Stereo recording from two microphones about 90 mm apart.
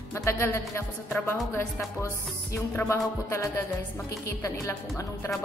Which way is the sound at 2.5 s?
30° left (ahead or behind).